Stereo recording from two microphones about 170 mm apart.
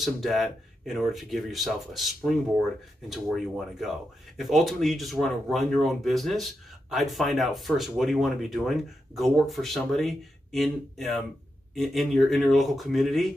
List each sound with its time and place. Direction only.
0.0 s speech: centre (ahead or behind)